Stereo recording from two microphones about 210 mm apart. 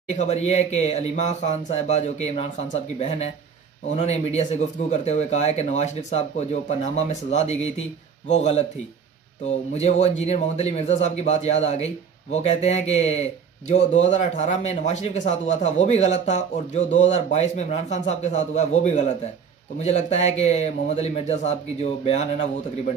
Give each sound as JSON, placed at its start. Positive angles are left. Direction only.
{"t": 0.1, "sound": "speech", "side_deg": 35}
{"t": 9.8, "sound": "speech", "side_deg": 30}